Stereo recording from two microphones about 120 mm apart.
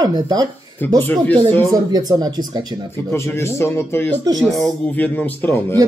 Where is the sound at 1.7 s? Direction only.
30° right (ahead or behind).